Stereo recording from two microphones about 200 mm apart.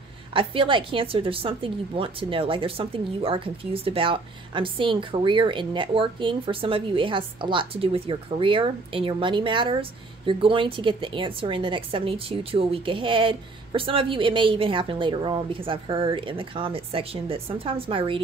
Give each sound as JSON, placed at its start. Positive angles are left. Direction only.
{"t": 0.3, "sound": "a woman's voice", "side_deg": -25}